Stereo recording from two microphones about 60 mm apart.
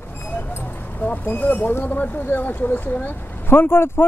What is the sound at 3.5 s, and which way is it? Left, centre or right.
Speech, left.